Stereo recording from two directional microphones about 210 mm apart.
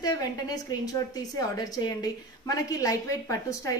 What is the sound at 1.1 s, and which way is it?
A woman's voice, 20° left (ahead or behind).